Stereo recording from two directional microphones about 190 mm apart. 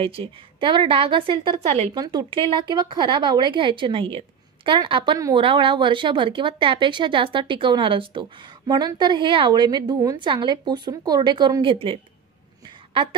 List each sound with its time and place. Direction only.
0.0 s a woman's voice: 30° right (ahead or behind)